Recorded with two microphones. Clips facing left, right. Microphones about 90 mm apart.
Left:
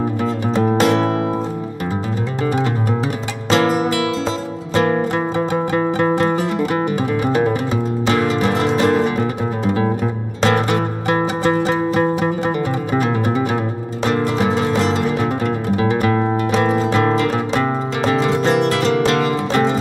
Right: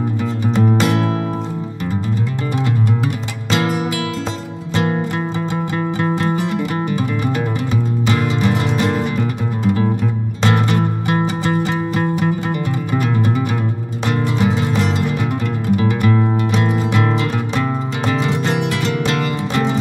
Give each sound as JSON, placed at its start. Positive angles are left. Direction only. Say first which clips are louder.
{"t": 0.2, "sound": "music", "louder": "right 1 dB", "side_deg": 40}
{"t": 3.4, "sound": "music", "louder": "left 3 dB", "side_deg": 40}
{"t": 5.8, "sound": "music", "louder": "left 4 dB", "side_deg": 30}
{"t": 10.4, "sound": "music", "louder": "left 1 dB", "side_deg": 35}